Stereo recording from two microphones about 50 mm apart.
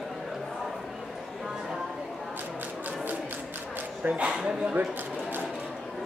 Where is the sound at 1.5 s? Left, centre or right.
Centre.